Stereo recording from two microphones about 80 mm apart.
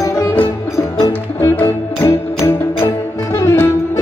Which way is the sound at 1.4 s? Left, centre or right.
Left.